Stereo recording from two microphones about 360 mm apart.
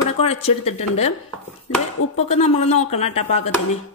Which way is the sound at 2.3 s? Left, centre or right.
Centre.